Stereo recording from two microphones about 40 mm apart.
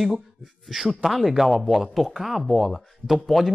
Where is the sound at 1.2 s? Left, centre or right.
Centre.